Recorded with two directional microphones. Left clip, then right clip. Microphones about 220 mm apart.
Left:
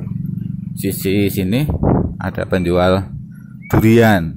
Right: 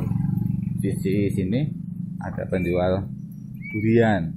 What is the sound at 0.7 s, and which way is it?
Speech, 20° left (ahead or behind).